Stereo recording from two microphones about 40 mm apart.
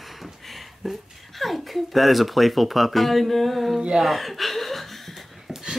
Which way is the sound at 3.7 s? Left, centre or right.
Centre.